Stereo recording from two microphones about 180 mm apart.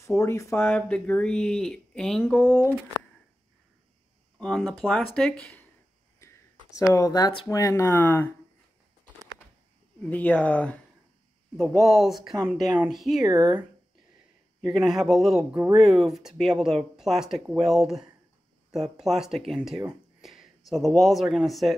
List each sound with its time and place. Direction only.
0.2 s speech: 15° left (ahead or behind)
4.4 s speech: 5° left (ahead or behind)
6.8 s speech: 20° left (ahead or behind)
10.0 s speech: 10° left (ahead or behind)
13.2 s speech: 20° right (ahead or behind)
14.7 s speech: centre (ahead or behind)
15.5 s speech: 15° right (ahead or behind)
15.8 s speech: centre (ahead or behind)
19.9 s a sound: centre (ahead or behind)
20.7 s speech: centre (ahead or behind)